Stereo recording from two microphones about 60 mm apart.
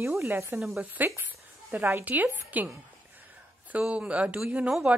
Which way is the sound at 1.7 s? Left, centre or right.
Right.